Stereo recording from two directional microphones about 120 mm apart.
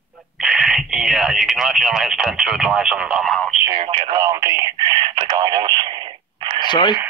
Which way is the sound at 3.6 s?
30° right (ahead or behind).